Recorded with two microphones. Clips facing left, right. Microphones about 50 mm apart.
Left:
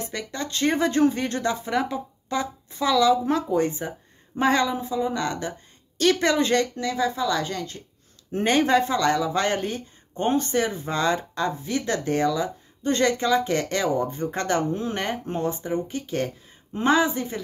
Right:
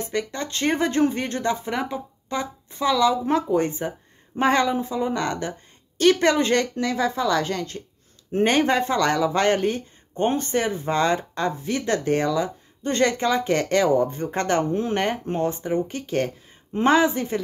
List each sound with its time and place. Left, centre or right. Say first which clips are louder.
0.1 s speech: right 3 dB; right
8.3 s speech: right 1 dB; right
8.9 s speech: right 1 dB; right